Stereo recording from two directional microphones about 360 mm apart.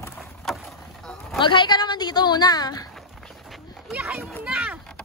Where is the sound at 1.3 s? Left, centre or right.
Centre.